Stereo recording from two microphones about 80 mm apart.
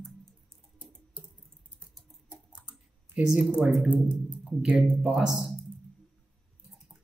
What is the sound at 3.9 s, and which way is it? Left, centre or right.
Speech, centre.